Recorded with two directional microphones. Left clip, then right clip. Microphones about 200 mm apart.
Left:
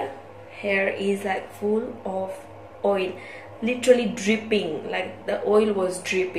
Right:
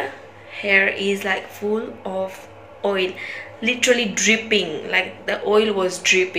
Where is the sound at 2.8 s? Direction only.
Centre (ahead or behind).